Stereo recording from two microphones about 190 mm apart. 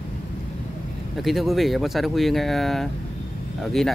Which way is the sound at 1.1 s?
Centre (ahead or behind).